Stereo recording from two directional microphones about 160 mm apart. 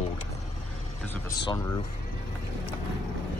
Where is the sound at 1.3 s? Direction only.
25° left (ahead or behind).